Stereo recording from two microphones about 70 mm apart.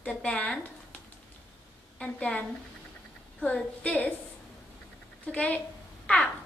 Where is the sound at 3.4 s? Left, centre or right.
Centre.